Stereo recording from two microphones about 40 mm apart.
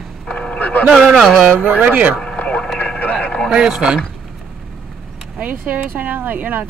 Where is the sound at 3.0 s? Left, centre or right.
Left.